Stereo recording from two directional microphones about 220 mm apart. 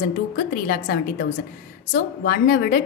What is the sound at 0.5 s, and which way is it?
A woman's voice, 40° left (ahead or behind).